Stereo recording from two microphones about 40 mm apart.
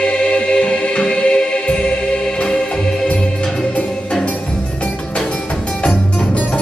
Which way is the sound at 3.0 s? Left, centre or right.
Left.